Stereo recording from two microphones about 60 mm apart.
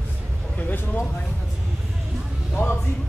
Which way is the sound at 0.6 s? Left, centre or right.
Left.